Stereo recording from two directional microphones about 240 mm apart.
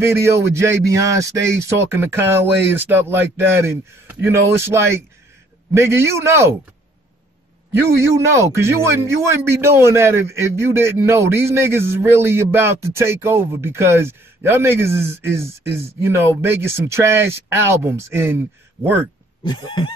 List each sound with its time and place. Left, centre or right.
0.0 s speech: centre
8.3 s speech: centre
19.4 s a sound: centre